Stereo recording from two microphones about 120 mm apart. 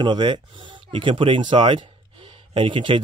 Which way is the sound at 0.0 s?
40° right (ahead or behind).